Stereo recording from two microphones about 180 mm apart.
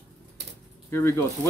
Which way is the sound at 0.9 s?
15° left (ahead or behind).